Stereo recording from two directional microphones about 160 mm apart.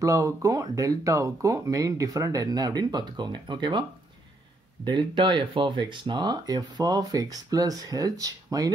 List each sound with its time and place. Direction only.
0.0 s speech: 20° right (ahead or behind)
4.8 s speech: 30° right (ahead or behind)